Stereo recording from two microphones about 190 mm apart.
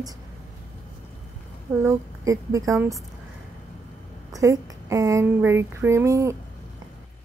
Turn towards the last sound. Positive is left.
turn(degrees=-15)  # may be behind; listen again after turning